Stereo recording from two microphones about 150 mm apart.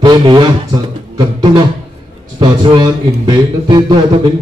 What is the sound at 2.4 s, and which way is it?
A man's voice, 30° right (ahead or behind).